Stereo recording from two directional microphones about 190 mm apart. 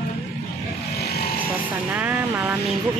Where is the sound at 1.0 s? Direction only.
55° left (ahead or behind).